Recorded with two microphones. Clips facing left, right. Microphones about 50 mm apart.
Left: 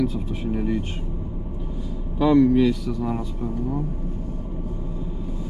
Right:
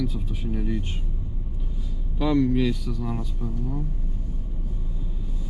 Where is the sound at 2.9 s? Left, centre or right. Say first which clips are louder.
Left 5 dB; centre.